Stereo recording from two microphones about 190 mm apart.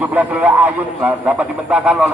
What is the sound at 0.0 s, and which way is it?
A man's voice, 10° right (ahead or behind).